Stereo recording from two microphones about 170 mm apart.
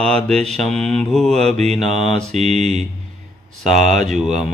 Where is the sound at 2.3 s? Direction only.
40° right (ahead or behind).